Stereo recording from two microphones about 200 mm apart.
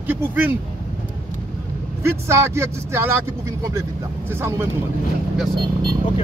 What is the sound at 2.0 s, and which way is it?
Speech, 15° right (ahead or behind).